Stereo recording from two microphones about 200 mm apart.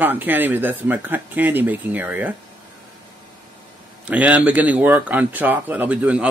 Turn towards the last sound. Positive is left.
turn(degrees=-5)  # may be behind; listen again after turning